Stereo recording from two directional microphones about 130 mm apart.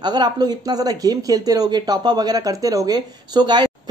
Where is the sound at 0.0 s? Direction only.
35° right (ahead or behind).